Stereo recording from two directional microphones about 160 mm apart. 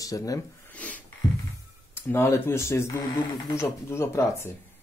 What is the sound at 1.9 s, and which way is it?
Speech, 15° left (ahead or behind).